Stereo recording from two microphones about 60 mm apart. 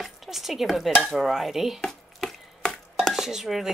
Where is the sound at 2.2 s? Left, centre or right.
Centre.